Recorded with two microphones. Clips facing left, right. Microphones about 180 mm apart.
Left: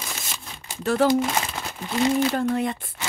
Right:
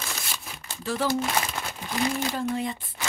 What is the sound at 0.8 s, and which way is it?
Speech, 55° left (ahead or behind).